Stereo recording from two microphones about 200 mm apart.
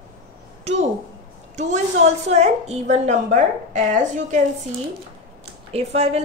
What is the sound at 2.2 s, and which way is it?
Speech, 35° right (ahead or behind).